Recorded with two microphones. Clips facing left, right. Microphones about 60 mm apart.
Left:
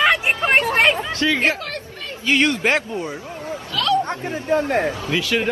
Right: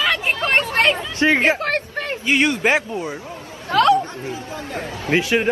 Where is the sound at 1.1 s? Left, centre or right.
Right.